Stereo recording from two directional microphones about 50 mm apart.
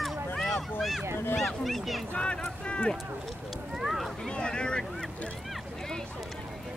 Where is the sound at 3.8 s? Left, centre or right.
Centre.